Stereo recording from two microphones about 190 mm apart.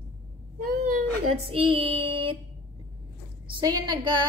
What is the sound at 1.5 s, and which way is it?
Child singing, 30° right (ahead or behind).